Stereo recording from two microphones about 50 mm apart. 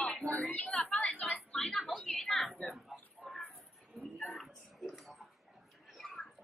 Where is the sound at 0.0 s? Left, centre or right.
Left.